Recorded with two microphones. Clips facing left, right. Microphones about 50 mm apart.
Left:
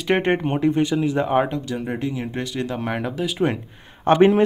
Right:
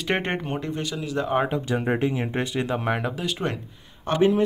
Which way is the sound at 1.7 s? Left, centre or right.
Right.